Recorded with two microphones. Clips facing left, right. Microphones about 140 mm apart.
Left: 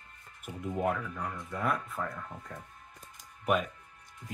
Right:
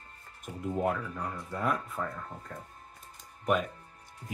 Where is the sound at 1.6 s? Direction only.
Centre (ahead or behind).